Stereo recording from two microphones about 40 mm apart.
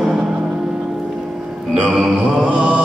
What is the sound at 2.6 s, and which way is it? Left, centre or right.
Music, right.